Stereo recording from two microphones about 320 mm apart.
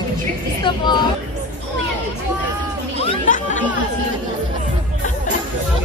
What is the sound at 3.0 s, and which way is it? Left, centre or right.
Chatter, left.